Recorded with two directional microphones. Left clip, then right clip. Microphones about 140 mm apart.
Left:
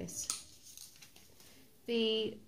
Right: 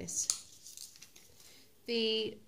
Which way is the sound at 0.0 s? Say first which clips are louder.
Right 5 dB; 35° right (ahead or behind).